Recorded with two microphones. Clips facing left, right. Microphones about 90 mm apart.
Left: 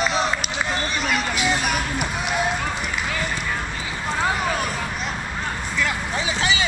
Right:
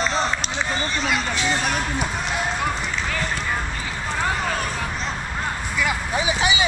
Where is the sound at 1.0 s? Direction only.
10° left (ahead or behind).